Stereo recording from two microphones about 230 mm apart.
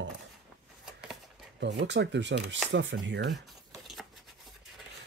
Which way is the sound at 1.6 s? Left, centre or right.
Right.